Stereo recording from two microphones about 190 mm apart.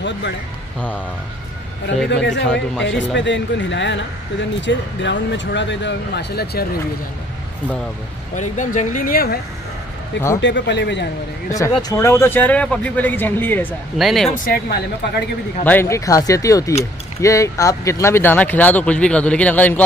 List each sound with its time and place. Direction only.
2.2 s speech: 70° left (ahead or behind)
8.4 s speech: 40° left (ahead or behind)
10.4 s speech: 70° left (ahead or behind)
11.5 s speech: 15° left (ahead or behind)
14.3 s speech: 50° left (ahead or behind)
15.6 s speech: 10° left (ahead or behind)